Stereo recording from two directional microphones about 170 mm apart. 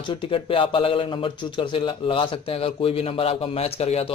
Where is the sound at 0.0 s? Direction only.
30° left (ahead or behind).